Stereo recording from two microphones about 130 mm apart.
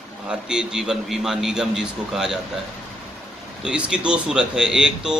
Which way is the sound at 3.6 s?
5° right (ahead or behind).